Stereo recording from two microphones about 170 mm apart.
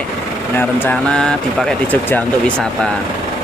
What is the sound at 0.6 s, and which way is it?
Speech, 10° left (ahead or behind).